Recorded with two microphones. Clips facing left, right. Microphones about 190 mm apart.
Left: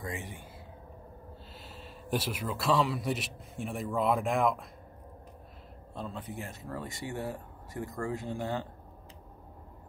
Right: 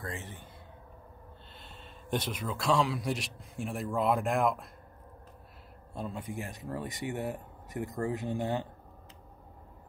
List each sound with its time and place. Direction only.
0.0 s speech: 15° left (ahead or behind)
1.6 s a man's voice: 5° left (ahead or behind)
5.9 s speech: 10° right (ahead or behind)